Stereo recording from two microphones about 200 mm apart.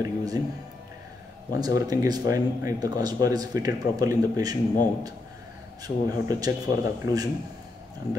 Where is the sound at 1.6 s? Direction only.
20° right (ahead or behind).